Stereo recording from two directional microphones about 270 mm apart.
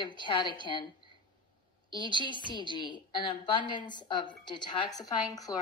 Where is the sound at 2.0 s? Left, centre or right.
Centre.